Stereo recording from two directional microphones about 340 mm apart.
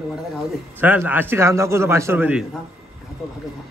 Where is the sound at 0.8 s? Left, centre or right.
Centre.